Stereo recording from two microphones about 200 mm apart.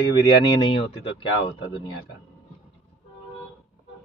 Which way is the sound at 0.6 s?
25° left (ahead or behind).